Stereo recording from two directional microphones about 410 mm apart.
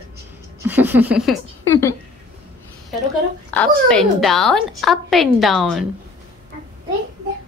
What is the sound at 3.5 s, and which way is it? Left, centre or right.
A woman's voice, centre.